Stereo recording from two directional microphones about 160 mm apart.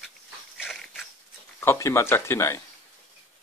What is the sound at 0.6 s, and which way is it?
Dog, 5° right (ahead or behind).